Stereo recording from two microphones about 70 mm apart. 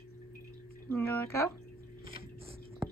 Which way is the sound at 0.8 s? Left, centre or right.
Left.